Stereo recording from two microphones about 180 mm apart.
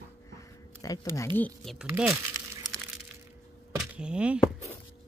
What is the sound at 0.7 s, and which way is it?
Speech, 20° left (ahead or behind).